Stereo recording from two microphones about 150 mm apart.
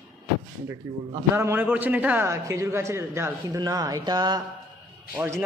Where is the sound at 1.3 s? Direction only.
15° right (ahead or behind).